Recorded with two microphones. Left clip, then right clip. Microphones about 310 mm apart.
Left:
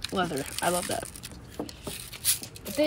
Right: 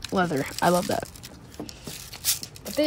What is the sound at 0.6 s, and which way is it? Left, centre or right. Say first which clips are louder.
Speech: right 6 dB; right.